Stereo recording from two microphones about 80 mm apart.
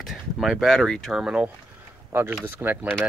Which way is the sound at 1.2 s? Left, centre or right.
Centre.